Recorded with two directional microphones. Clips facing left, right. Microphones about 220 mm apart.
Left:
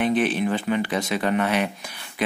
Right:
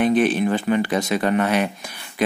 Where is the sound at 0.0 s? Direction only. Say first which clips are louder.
Right 4 dB; 45° right (ahead or behind).